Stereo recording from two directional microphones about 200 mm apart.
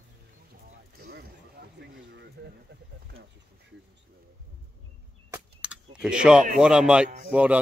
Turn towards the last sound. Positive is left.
turn(degrees=-5)  # may be behind; listen again after turning